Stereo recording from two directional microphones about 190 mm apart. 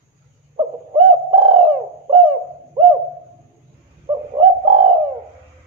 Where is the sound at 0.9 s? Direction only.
30° right (ahead or behind).